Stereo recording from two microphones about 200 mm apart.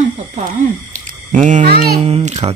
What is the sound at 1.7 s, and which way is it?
Speech, 50° right (ahead or behind).